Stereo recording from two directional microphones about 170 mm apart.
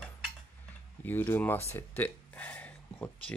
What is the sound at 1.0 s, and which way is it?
Speech, 10° left (ahead or behind).